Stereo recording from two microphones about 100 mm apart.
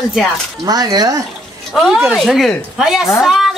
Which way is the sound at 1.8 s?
5° right (ahead or behind).